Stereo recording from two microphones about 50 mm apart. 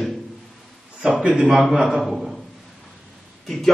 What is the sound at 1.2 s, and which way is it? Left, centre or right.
Speech, right.